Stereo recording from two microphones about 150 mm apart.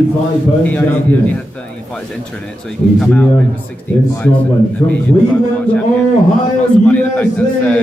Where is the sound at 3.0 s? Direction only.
5° left (ahead or behind).